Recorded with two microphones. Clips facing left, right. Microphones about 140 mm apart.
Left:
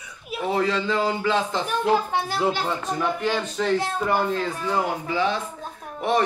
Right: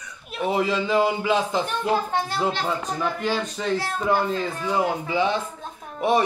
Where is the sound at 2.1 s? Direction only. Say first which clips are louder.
Left 1 dB; 5° left (ahead or behind).